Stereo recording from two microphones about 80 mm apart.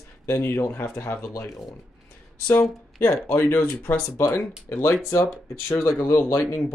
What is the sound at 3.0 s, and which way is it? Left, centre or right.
Speech, left.